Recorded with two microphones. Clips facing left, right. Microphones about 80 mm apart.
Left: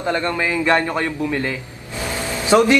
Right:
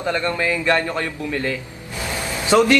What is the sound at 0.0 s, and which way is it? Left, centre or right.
A man's voice, left.